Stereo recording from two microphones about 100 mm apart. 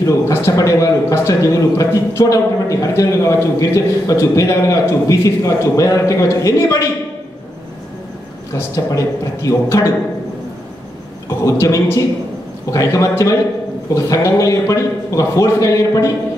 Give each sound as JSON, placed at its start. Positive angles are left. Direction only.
{"t": 0.0, "sound": "a man's voice", "side_deg": 30}
{"t": 8.7, "sound": "a man's voice", "side_deg": 35}
{"t": 11.2, "sound": "a man's voice", "side_deg": 30}